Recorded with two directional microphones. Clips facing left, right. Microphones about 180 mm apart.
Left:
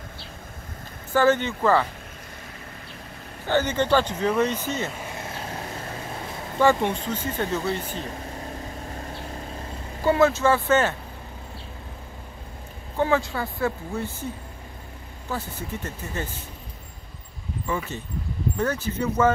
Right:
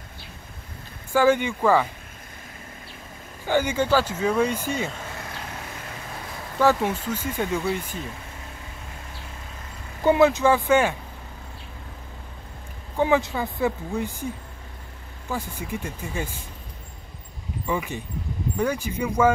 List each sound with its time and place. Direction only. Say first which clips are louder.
1.1 s speech: right 1 dB; 10° right (ahead or behind)
3.4 s speech: even; 10° right (ahead or behind)
4.8 s vehicle: left 1 dB; 15° left (ahead or behind)
6.6 s speech: even; 5° right (ahead or behind)
8.4 s vehicle: left 7 dB; 40° left (ahead or behind)
10.0 s speech: right 2 dB; 15° right (ahead or behind)
12.9 s speech: right 2 dB; 15° right (ahead or behind)
17.6 s speech: right 2 dB; 15° right (ahead or behind)